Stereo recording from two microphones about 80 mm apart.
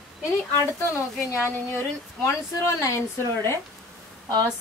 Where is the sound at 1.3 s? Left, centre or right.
Left.